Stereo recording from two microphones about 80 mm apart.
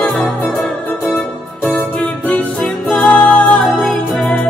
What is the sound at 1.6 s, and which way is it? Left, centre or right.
Music, centre.